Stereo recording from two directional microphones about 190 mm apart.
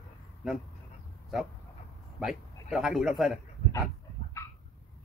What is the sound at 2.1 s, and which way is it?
Speech, centre (ahead or behind).